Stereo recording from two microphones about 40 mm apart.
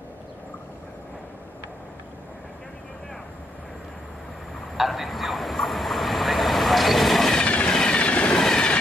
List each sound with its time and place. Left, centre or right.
4.7 s vehicle: centre
7.4 s vehicle: left
7.7 s train: left